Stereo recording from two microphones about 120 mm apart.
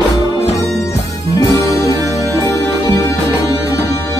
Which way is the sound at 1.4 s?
25° left (ahead or behind).